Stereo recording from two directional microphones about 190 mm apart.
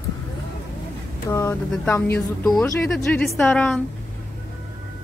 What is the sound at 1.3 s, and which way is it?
Speech, 10° left (ahead or behind).